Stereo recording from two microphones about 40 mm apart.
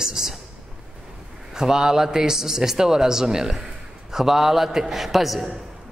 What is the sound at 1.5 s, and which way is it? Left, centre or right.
A man's voice, centre.